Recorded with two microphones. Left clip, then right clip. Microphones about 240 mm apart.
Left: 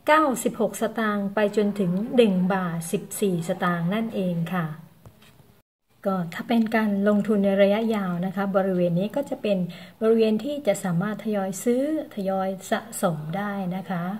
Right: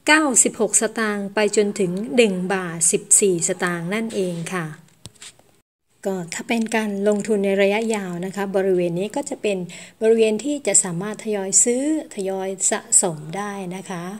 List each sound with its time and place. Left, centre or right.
0.0 s a woman's voice: right
6.0 s a woman's voice: right